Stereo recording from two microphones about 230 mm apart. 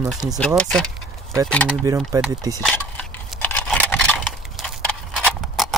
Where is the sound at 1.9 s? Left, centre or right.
Centre.